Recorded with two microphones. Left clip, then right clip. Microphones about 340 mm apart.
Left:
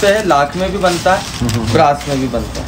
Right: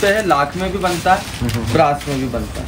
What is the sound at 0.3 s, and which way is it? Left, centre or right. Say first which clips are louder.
Speech: left 3 dB; centre.